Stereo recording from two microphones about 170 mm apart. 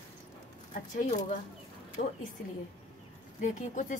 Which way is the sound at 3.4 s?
50° left (ahead or behind).